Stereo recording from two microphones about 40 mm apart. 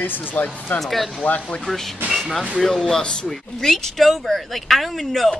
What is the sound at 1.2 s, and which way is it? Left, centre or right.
Speech, left.